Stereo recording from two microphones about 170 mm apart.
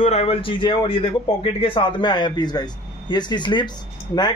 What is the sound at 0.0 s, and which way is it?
Speech, 35° left (ahead or behind).